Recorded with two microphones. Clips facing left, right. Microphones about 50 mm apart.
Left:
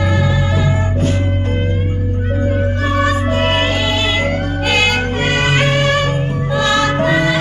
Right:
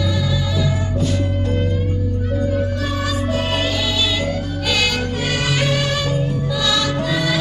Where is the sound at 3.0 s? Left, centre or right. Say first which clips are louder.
Left 5 dB; left.